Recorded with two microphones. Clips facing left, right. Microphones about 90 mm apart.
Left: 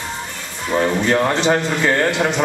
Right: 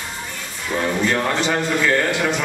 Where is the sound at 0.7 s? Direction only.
20° left (ahead or behind).